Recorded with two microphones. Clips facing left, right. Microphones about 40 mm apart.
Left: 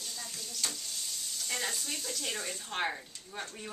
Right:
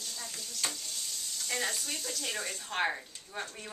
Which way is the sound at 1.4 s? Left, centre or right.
Centre.